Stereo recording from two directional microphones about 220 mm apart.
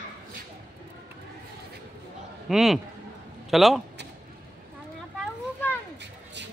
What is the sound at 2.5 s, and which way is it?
A man's voice, centre (ahead or behind).